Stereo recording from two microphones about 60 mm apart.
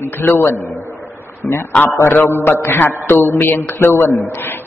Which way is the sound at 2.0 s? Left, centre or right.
Left.